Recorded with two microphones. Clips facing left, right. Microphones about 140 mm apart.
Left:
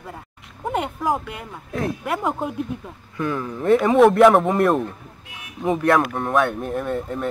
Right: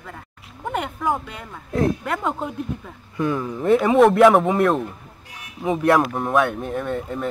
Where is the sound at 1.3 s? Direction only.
15° left (ahead or behind).